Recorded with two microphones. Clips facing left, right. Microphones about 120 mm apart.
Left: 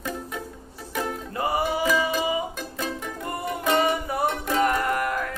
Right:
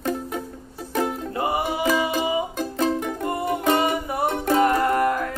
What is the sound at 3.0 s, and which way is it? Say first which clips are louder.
Music: right 5 dB; 25° right (ahead or behind).